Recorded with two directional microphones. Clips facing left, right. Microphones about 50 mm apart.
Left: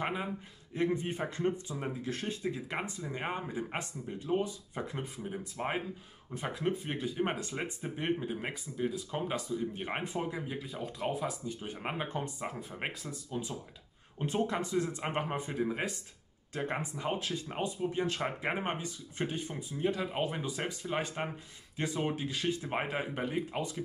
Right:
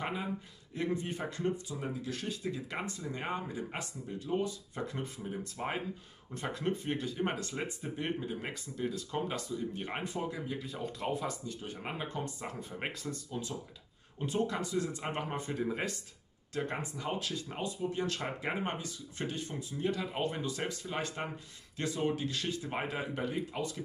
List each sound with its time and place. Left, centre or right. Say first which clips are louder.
0.0 s speech: left 1 dB; left
10.6 s speech: left 1 dB; centre
11.4 s speech: left 2 dB; left
12.5 s speech: left 1 dB; centre
14.1 s speech: left 1 dB; left